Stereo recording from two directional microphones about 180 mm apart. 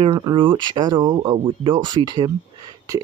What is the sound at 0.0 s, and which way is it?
Speech, 25° right (ahead or behind).